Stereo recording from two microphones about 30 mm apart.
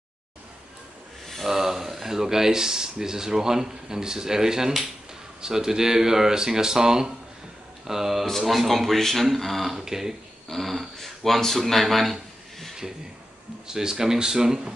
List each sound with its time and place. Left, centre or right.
1.2 s a sound: centre
1.5 s speech: centre
9.8 s speech: centre
10.5 s speech: centre
13.7 s speech: centre